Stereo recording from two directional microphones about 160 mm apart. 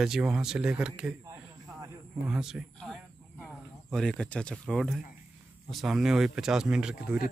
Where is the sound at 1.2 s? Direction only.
20° right (ahead or behind).